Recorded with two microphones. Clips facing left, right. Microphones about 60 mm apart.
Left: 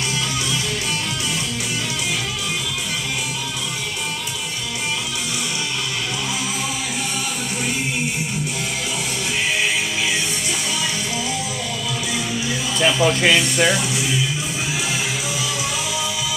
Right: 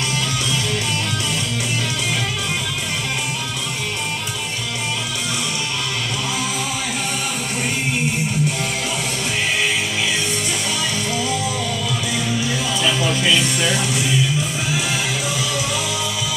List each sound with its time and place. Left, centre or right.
13.0 s speech: left